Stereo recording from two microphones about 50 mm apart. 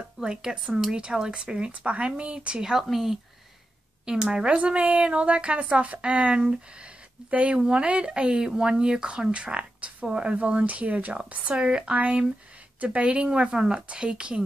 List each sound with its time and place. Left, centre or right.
0.2 s speech: centre